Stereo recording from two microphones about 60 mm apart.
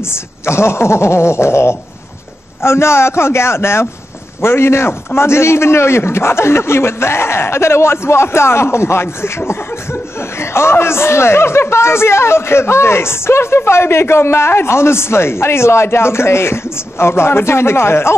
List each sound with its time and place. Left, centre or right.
0.0 s speech: left